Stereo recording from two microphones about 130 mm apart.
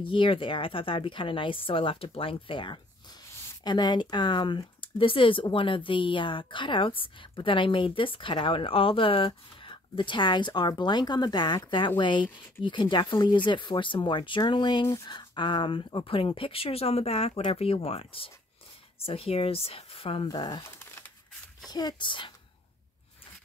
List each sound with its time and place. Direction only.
0.0 s speech: 40° left (ahead or behind)
20.3 s speech: 35° left (ahead or behind)
20.6 s crumpling: 20° left (ahead or behind)
21.6 s speech: 30° left (ahead or behind)